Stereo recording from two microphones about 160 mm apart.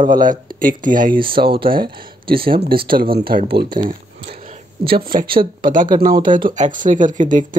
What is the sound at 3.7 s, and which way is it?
Speech, 70° right (ahead or behind).